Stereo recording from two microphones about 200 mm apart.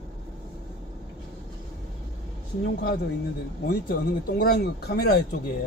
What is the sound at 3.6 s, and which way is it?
Speech, 50° left (ahead or behind).